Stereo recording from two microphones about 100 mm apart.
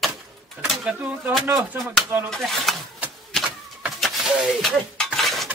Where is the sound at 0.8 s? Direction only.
15° right (ahead or behind).